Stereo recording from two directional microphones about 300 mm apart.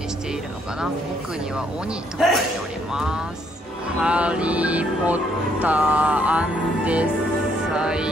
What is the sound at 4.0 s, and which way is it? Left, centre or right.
Music, centre.